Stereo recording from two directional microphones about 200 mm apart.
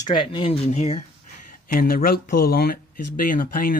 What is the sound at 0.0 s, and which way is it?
Speech, 25° left (ahead or behind).